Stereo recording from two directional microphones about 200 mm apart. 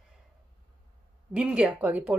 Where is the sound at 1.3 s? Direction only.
5° right (ahead or behind).